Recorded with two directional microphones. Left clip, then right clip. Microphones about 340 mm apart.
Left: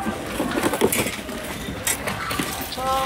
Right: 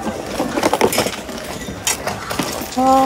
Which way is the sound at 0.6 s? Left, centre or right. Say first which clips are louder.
Right 7 dB; centre.